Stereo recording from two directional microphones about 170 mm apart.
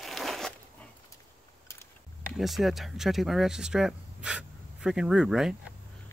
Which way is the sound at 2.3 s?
Centre (ahead or behind).